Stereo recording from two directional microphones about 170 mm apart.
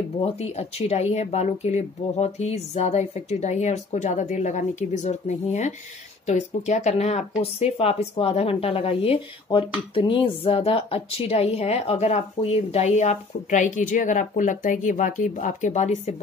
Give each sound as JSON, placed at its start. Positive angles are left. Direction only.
{"t": 0.2, "sound": "speech", "side_deg": 40}